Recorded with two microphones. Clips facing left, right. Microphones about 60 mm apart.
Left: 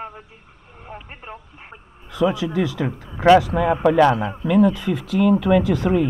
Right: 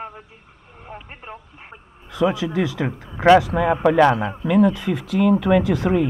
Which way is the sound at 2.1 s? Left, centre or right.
Right.